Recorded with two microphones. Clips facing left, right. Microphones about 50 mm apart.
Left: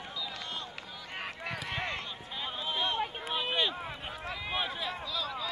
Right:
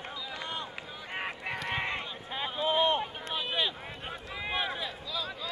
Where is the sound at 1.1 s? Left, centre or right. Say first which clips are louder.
Right 3 dB; centre.